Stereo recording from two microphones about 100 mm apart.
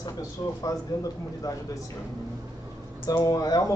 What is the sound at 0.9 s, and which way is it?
Speech, 35° left (ahead or behind).